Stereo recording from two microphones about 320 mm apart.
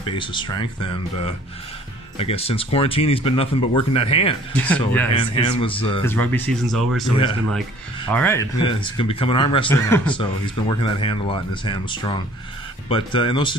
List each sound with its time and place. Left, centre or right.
0.0 s speech: centre
6.1 s speech: centre
8.1 s speech: centre